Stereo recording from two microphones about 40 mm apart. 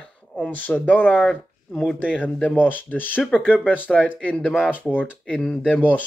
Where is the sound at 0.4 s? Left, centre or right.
Left.